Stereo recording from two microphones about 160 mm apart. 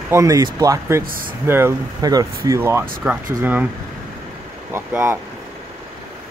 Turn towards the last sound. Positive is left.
turn(degrees=-15)  # may be behind; listen again after turning